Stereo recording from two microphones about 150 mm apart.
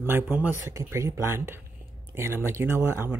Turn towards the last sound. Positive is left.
turn(degrees=-15)  # may be behind; listen again after turning